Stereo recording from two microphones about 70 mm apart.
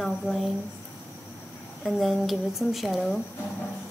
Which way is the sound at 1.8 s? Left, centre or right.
Centre.